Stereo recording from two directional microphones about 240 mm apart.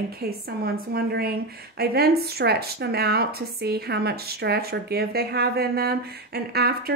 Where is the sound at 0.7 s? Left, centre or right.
Right.